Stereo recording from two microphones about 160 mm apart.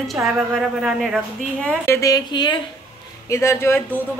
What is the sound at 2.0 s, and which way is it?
A woman's voice, 25° left (ahead or behind).